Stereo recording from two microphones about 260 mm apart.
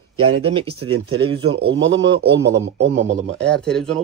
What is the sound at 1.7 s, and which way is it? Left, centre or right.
Speech, right.